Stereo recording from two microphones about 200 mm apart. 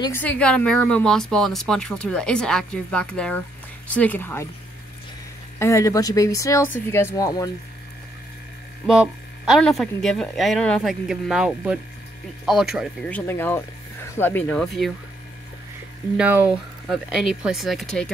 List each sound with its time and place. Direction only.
0.0 s speech: 10° left (ahead or behind)
5.6 s speech: 15° left (ahead or behind)
8.8 s speech: 5° right (ahead or behind)
16.2 s speech: 5° right (ahead or behind)